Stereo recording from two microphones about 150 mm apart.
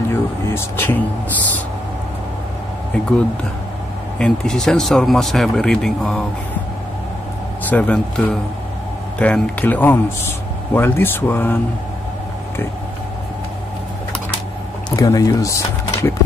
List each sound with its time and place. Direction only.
0.1 s speech: 15° left (ahead or behind)
4.2 s speech: 5° left (ahead or behind)
7.7 s a man's voice: 5° left (ahead or behind)
14.9 s a sound: 25° left (ahead or behind)